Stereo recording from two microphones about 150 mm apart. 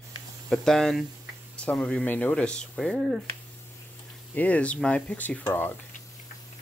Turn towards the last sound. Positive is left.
turn(degrees=15)  # may be behind; listen again after turning